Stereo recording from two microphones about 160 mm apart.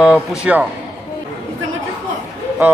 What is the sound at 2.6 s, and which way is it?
Speech, 10° right (ahead or behind).